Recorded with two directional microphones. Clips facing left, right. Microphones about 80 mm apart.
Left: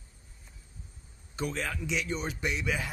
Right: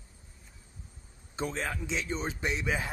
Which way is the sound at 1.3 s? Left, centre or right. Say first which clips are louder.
Even; right.